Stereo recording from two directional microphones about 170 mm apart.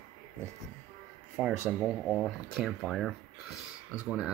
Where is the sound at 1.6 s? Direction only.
5° right (ahead or behind).